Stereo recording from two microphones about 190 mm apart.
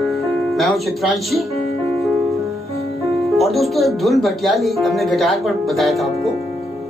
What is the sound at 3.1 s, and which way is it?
Speech, centre (ahead or behind).